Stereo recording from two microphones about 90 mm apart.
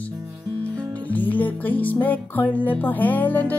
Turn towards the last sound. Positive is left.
turn(degrees=20)  # may be behind; listen again after turning